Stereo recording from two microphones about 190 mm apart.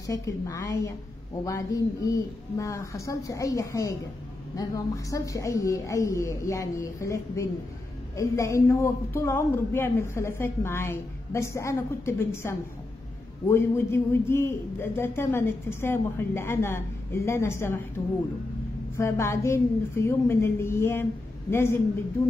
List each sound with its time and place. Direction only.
0.0 s a woman's voice: 20° left (ahead or behind)
18.9 s a man's voice: 15° left (ahead or behind)